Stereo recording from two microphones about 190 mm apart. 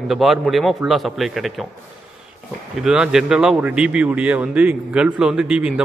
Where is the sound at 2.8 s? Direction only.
5° right (ahead or behind).